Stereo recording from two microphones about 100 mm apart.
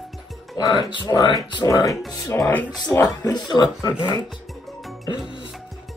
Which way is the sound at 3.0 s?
40° left (ahead or behind).